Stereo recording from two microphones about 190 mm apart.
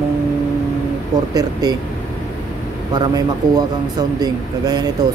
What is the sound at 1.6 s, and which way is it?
Speech, 20° right (ahead or behind).